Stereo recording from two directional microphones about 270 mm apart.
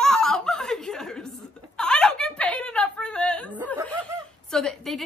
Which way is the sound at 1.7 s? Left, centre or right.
Centre.